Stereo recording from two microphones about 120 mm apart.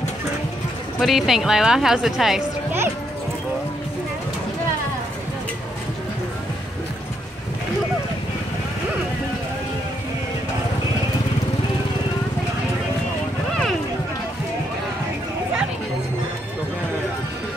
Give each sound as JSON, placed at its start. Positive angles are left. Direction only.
{"t": 0.9, "sound": "a woman's voice", "side_deg": 0}